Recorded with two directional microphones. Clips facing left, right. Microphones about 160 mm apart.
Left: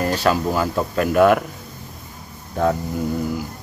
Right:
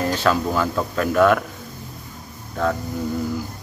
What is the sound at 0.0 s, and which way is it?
Speech, 10° left (ahead or behind).